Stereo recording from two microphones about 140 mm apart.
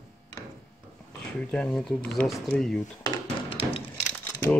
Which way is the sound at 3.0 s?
35° left (ahead or behind).